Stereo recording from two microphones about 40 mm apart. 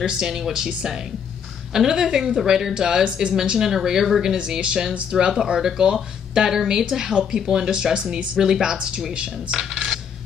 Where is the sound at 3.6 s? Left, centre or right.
Centre.